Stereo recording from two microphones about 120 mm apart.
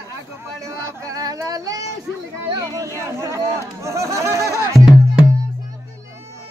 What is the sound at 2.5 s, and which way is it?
Speech, 25° right (ahead or behind).